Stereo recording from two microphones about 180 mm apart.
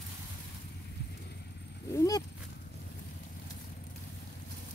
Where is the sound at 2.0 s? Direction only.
20° left (ahead or behind).